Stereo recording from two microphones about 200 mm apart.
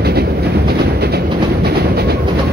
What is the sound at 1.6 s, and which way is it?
Train, 50° right (ahead or behind).